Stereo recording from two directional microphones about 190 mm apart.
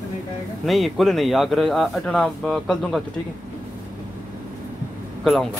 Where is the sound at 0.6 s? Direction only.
Centre (ahead or behind).